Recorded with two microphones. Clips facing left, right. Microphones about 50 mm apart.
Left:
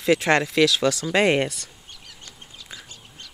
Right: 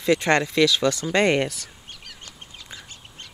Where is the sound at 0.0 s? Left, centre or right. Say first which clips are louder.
Even; centre.